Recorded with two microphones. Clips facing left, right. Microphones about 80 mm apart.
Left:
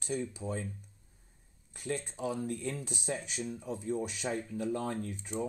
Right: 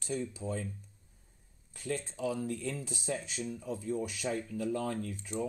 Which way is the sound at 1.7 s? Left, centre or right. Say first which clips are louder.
Even; left.